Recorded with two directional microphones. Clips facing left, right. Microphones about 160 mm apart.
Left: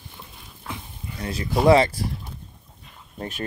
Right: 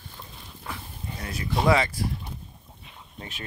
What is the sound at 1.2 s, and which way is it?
Speech, 30° left (ahead or behind).